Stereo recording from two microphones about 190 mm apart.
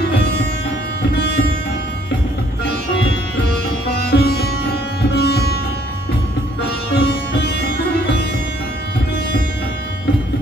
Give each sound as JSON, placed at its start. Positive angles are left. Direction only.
{"t": 4.1, "sound": "sitar", "side_deg": 55}
{"t": 5.1, "sound": "music", "side_deg": 55}
{"t": 7.0, "sound": "music", "side_deg": 60}